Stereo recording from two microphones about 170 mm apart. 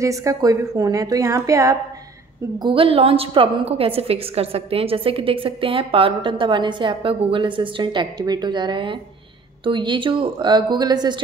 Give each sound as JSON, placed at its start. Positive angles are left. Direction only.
{"t": 0.0, "sound": "a woman's voice", "side_deg": -20}
{"t": 2.6, "sound": "a woman's voice", "side_deg": -30}